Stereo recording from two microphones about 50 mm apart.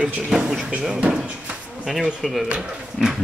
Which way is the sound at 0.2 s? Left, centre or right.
Centre.